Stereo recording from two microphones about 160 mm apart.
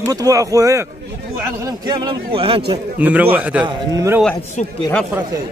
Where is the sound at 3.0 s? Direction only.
10° right (ahead or behind).